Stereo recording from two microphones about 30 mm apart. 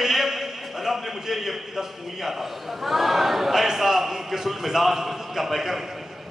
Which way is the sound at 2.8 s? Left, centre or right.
Centre.